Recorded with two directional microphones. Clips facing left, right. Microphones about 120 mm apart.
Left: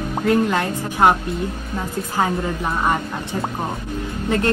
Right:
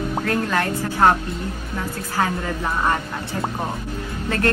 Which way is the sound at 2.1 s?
20° left (ahead or behind).